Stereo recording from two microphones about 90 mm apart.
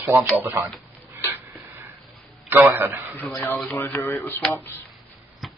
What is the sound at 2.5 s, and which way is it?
Speech, 20° right (ahead or behind).